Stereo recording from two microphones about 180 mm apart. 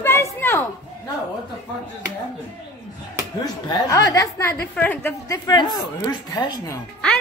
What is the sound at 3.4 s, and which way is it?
A woman's voice, 20° left (ahead or behind).